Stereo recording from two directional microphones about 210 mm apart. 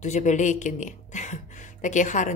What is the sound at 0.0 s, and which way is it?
Speech, 35° left (ahead or behind).